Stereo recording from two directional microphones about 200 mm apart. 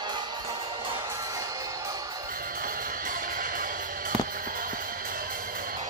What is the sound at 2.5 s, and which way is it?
Music, 45° right (ahead or behind).